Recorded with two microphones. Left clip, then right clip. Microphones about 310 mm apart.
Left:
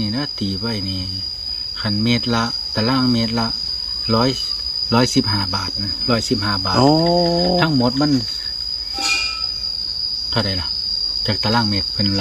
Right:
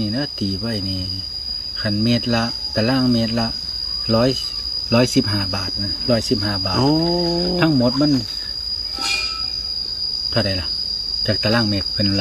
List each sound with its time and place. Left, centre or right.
1.9 s speech: centre
6.8 s a sound: left
7.5 s speech: centre
11.2 s speech: centre